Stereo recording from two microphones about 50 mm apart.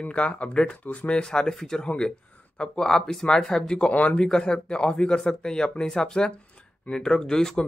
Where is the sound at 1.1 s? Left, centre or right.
Centre.